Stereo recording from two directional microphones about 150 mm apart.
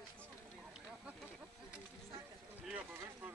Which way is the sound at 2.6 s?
10° right (ahead or behind).